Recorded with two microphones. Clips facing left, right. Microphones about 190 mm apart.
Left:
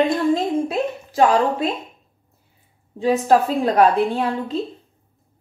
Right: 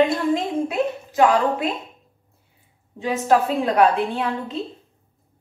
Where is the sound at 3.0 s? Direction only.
35° left (ahead or behind).